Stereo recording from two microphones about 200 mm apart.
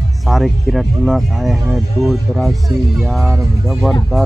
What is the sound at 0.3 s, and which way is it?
Speech, centre (ahead or behind).